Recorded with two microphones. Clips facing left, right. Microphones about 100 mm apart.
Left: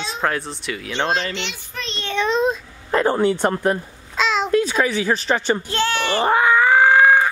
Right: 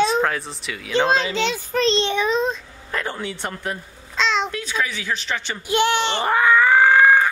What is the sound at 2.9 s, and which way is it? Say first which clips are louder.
Speech: left 10 dB; 35° left (ahead or behind).